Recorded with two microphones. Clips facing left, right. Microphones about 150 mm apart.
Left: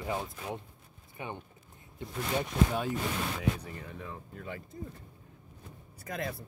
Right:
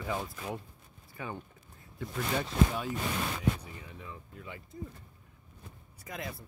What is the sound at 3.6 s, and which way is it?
Speech, 50° left (ahead or behind).